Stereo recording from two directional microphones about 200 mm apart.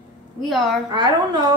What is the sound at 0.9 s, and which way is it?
Speech, 20° right (ahead or behind).